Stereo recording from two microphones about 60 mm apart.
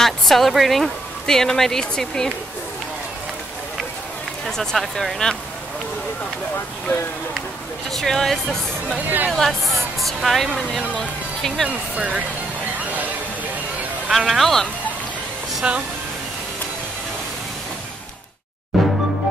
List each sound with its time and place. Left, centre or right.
0.0 s speech: centre
4.5 s speech: centre
7.9 s speech: centre
14.1 s speech: centre
15.6 s speech: centre
18.7 s music: centre